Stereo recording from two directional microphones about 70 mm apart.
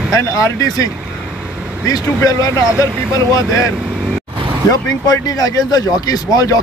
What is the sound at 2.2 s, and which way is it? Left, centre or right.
Speech, left.